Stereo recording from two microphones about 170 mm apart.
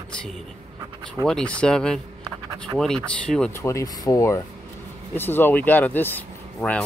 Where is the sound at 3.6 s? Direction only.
20° left (ahead or behind).